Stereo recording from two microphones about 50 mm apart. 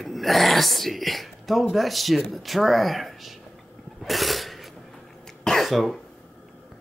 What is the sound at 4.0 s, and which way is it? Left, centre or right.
Cough, centre.